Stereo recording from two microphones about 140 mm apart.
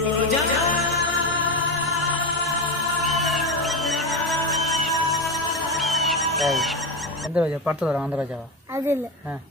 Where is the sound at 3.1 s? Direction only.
Centre (ahead or behind).